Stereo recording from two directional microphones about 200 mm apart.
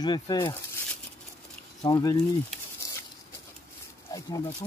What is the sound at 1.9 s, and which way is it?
Speech, 20° left (ahead or behind).